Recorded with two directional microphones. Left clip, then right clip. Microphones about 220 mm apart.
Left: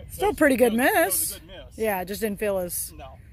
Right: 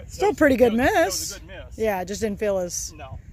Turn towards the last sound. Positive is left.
turn(degrees=0)  # may be behind; listen again after turning